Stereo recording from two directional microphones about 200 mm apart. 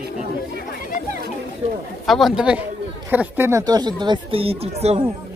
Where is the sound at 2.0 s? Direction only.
Centre (ahead or behind); by 5.1 s 30° right (ahead or behind).